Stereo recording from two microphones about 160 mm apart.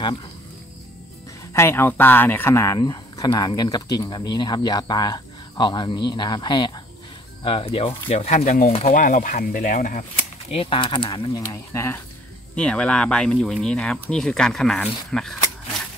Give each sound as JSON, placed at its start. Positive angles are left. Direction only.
{"t": 1.5, "sound": "speech", "side_deg": 15}
{"t": 8.9, "sound": "speech", "side_deg": 55}
{"t": 10.5, "sound": "speech", "side_deg": 35}
{"t": 12.5, "sound": "speech", "side_deg": 5}